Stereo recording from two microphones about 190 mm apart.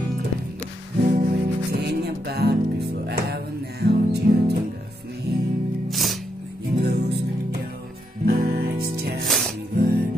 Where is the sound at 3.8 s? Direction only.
60° right (ahead or behind).